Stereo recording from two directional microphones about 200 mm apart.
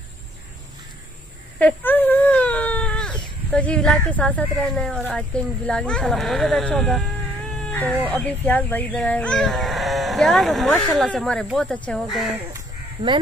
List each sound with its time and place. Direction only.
1.6 s wail: 10° left (ahead or behind)
5.1 s speech: 5° left (ahead or behind)
8.1 s speech: 10° left (ahead or behind)
12.5 s chicken: 25° right (ahead or behind)